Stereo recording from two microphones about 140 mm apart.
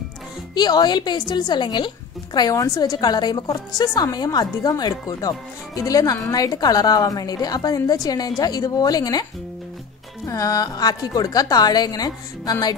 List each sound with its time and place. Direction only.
0.6 s a woman's voice: 30° left (ahead or behind)
10.2 s a woman's voice: 25° left (ahead or behind)